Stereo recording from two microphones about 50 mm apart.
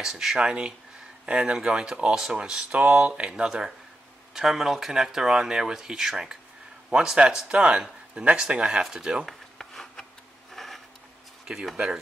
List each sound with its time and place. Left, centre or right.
0.0 s speech: centre
3.0 s speech: right
4.3 s speech: centre
9.2 s a sound: centre
11.7 s speech: centre